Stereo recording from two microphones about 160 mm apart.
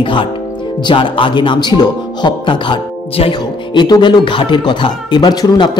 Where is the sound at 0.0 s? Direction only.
30° left (ahead or behind).